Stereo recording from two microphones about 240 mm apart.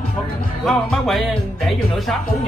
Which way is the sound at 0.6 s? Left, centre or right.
Centre.